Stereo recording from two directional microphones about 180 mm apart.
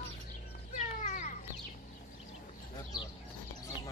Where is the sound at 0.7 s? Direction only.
40° left (ahead or behind).